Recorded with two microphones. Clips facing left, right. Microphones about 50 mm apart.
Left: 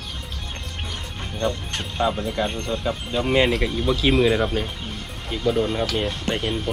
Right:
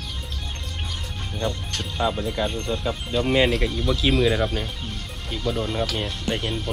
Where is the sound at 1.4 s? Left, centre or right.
Centre.